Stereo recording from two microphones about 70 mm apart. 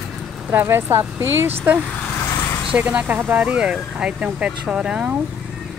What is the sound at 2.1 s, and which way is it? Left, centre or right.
Vehicle, left.